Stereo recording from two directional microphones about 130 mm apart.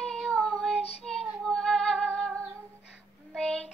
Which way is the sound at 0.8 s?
50° left (ahead or behind).